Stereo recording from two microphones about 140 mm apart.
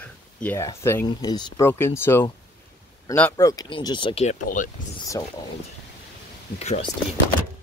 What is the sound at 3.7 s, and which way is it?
Speech, 35° left (ahead or behind).